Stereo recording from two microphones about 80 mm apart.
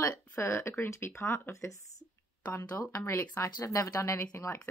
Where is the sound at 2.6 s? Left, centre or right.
Left.